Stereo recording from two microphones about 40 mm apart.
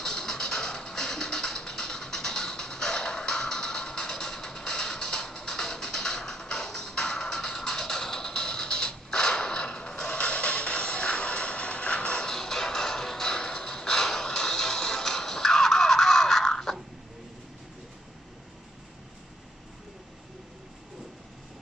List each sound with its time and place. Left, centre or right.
0.0 s music: centre
12.3 s music: centre